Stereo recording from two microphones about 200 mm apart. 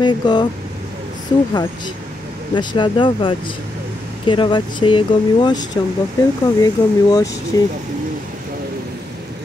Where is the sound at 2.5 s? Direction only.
25° left (ahead or behind).